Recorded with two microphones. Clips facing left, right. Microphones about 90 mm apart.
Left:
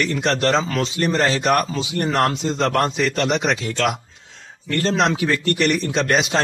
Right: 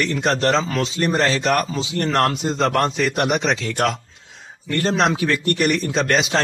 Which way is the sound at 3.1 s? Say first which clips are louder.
Even; 15° right (ahead or behind).